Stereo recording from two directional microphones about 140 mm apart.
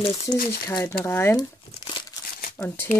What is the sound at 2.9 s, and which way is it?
Speech, 55° left (ahead or behind).